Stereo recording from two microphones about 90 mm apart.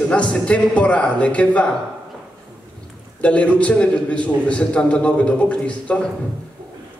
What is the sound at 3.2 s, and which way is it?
A man's voice, 15° left (ahead or behind).